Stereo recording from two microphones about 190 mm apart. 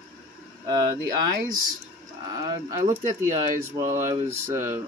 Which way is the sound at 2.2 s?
20° right (ahead or behind).